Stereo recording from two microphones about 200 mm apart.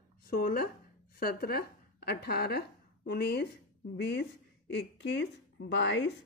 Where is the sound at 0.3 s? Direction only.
50° left (ahead or behind).